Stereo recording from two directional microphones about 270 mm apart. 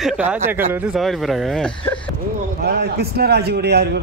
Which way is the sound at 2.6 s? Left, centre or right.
Right.